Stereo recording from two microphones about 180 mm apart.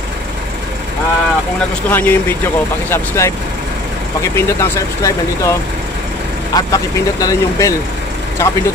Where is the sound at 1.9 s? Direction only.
10° left (ahead or behind).